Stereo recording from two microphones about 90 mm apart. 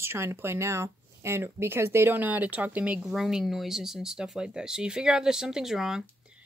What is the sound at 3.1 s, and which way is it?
Speech, 5° right (ahead or behind).